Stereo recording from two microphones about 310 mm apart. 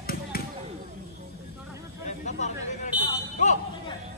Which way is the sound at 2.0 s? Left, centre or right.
Left.